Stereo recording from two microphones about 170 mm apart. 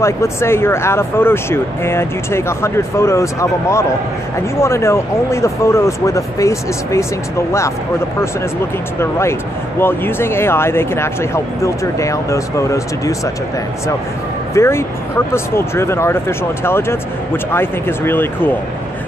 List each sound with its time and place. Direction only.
0.0 s speech: 15° left (ahead or behind)
9.0 s speech: 15° left (ahead or behind)
14.5 s speech: 15° left (ahead or behind)